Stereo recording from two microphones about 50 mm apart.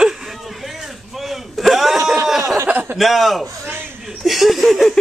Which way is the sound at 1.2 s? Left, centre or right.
Centre.